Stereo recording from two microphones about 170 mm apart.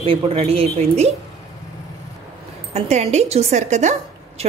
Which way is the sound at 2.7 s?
40° right (ahead or behind).